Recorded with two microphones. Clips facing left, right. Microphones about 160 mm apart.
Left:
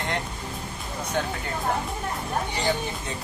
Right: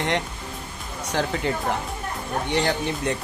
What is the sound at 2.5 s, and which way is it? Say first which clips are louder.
Speech: right 4 dB; 70° right (ahead or behind).